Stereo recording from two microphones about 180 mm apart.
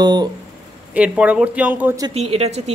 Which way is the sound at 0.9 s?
5° right (ahead or behind).